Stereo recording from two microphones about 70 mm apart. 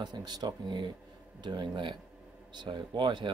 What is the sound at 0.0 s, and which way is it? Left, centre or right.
Speech, right.